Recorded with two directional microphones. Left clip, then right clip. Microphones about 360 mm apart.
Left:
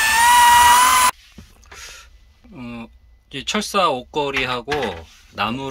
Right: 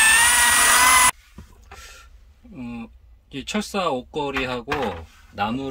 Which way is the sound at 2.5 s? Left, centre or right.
Centre.